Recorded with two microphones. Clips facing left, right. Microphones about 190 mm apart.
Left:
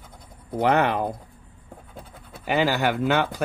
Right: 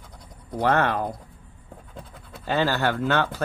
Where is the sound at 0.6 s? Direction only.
20° left (ahead or behind).